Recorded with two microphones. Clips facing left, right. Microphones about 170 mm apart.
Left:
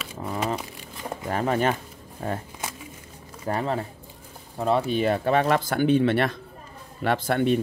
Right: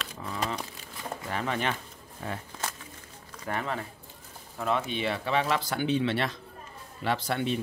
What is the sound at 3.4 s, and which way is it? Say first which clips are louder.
Speech: left 6 dB; 35° left (ahead or behind).